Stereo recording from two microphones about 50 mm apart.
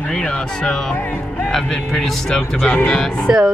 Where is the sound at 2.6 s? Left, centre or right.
Left.